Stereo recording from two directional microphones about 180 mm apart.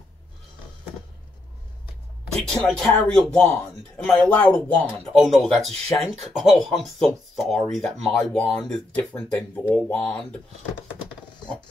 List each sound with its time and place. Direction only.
2.5 s speech: 5° left (ahead or behind)